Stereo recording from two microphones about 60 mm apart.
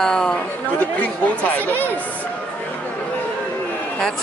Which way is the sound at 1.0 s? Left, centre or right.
Left.